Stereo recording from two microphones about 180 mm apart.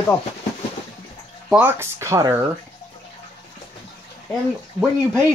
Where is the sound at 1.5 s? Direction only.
10° right (ahead or behind).